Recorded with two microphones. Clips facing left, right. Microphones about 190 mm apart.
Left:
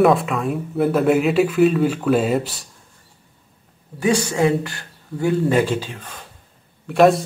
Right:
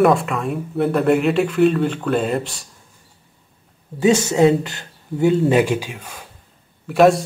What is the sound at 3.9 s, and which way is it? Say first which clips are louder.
A man's voice: right 3 dB; 25° right (ahead or behind).